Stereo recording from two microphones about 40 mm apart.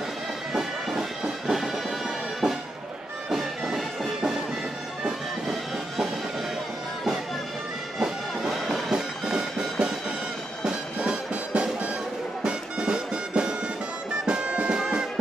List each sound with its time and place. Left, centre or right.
0.5 s music: centre
3.3 s bagpipes: centre
8.0 s music: centre
8.9 s music: right